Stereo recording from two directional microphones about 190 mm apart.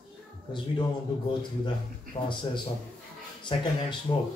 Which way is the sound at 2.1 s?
25° left (ahead or behind).